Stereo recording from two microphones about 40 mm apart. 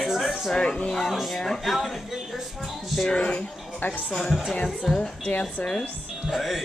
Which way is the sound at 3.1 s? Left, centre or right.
Left.